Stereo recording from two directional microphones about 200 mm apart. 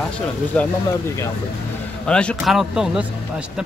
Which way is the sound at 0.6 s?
5° left (ahead or behind).